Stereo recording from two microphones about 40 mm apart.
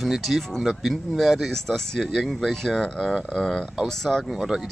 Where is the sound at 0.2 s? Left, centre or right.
Centre.